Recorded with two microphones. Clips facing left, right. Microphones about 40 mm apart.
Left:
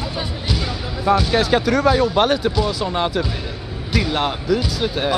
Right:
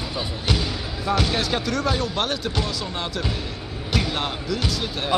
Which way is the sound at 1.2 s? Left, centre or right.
Centre.